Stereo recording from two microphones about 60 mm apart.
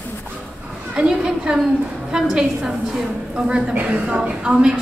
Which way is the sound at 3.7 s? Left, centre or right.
Right.